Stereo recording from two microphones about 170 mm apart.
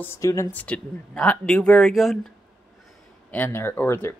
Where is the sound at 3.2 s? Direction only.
15° left (ahead or behind).